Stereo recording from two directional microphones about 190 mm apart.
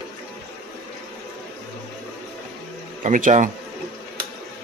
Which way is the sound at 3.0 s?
40° right (ahead or behind).